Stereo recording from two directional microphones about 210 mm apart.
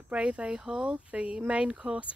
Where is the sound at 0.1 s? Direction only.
5° right (ahead or behind).